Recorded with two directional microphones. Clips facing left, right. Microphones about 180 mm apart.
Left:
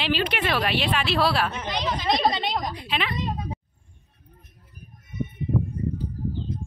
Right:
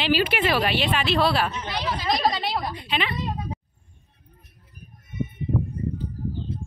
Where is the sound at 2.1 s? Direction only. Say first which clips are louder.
Even; centre (ahead or behind).